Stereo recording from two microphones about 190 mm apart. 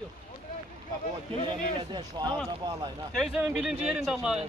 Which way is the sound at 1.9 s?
20° right (ahead or behind).